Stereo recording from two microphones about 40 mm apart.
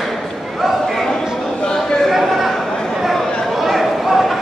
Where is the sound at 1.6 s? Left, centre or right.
Centre.